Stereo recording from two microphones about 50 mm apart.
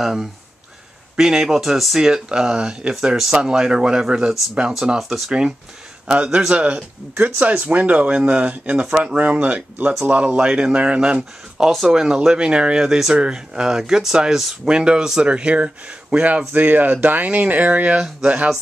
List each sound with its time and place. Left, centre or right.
0.0 s speech: centre
6.2 s speech: centre
7.2 s speech: right
11.6 s speech: centre; by 18.5 s right